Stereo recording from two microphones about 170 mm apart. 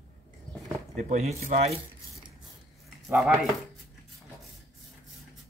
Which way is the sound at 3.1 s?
5° right (ahead or behind).